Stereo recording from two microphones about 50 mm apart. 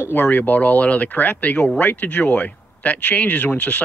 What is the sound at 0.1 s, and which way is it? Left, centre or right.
Speech, left.